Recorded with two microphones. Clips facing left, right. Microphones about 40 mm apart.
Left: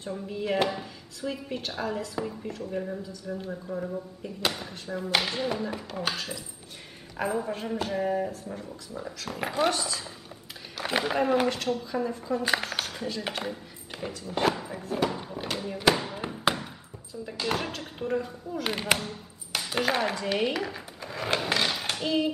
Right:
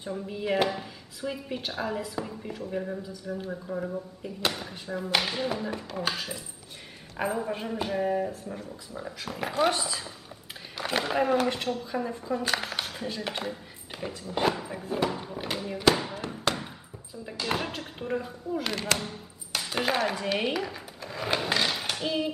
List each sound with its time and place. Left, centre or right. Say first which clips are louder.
0.1 s speech: even; centre
6.1 s speech: even; centre
9.7 s speech: even; centre
10.8 s a sound: left 1 dB; centre
11.4 s speech: left 1 dB; centre
12.5 s a sound: left 1 dB; centre
13.3 s speech: even; centre
14.8 s a sound: even; centre
15.8 s speech: right 1 dB; centre
17.3 s speech: even; centre
18.6 s speech: left 3 dB; centre
18.9 s chopping: even; centre
19.9 s speech: right 1 dB; centre